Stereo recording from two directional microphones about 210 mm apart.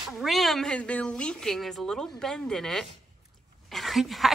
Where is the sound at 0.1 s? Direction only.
Centre (ahead or behind).